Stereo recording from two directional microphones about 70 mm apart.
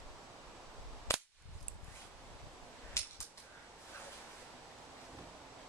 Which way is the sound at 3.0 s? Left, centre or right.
Left.